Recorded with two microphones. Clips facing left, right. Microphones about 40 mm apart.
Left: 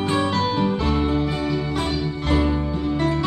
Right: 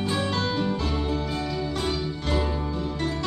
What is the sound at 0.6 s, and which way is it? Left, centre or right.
Music, left.